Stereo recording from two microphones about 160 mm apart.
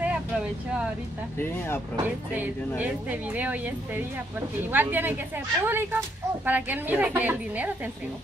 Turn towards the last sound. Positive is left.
turn(degrees=-10)  # may be behind; listen again after turning